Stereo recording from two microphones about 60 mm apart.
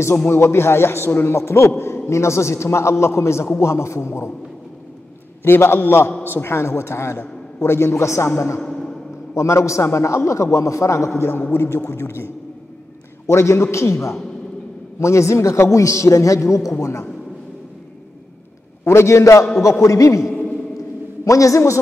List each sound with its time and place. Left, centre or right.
0.3 s a man's voice: left
5.4 s a man's voice: left
8.5 s a sound: centre
9.3 s a man's voice: left
11.1 s a man's voice: left
13.3 s a man's voice: left
18.9 s a man's voice: left
21.2 s a man's voice: left